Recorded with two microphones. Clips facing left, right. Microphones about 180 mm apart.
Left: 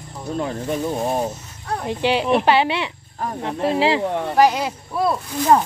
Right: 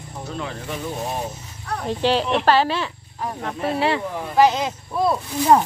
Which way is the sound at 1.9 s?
15° left (ahead or behind).